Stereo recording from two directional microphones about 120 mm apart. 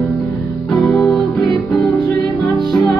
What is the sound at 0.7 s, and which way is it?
Music, 5° left (ahead or behind).